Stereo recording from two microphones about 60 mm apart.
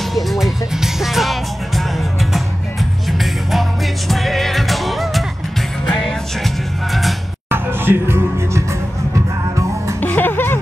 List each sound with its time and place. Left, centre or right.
0.1 s speech: centre
4.1 s music: centre
7.4 s music: right
10.0 s music: left